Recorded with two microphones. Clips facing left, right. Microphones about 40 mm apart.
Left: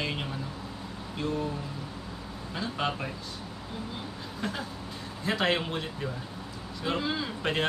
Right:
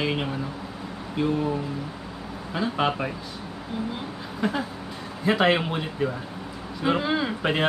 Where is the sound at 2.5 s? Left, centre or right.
Right.